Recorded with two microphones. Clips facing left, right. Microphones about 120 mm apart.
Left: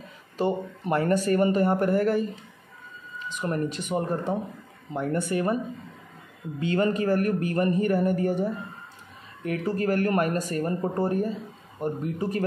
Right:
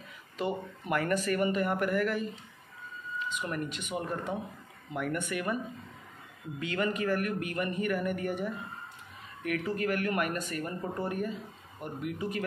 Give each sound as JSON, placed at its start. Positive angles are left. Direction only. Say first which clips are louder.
{"t": 0.4, "sound": "speech", "louder": "left 7 dB", "side_deg": 30}
{"t": 3.3, "sound": "speech", "louder": "left 10 dB", "side_deg": 35}
{"t": 6.6, "sound": "speech", "louder": "left 7 dB", "side_deg": 30}